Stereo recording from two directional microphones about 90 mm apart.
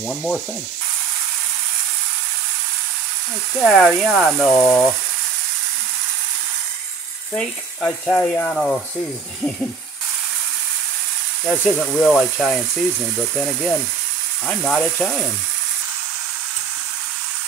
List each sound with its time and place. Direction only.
0.1 s speech: 5° left (ahead or behind)
3.5 s speech: 5° left (ahead or behind)
4.5 s speech: 20° left (ahead or behind)
7.3 s speech: 5° left (ahead or behind)
11.8 s speech: 5° left (ahead or behind)
14.8 s speech: 20° left (ahead or behind)